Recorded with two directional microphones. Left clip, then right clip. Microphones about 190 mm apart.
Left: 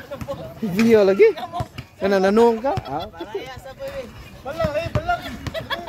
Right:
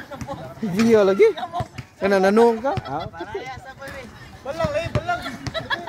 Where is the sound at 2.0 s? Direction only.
5° right (ahead or behind).